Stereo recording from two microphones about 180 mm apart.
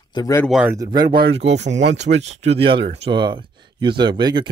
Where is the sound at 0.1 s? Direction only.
20° left (ahead or behind).